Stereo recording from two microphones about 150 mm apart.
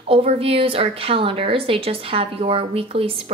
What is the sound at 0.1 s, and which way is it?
A woman's voice, 40° right (ahead or behind).